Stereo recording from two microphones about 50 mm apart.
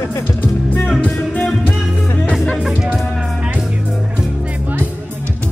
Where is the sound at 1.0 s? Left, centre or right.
Left.